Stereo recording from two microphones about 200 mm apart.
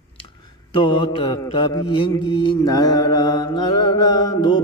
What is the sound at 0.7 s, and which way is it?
Mantra, 25° left (ahead or behind).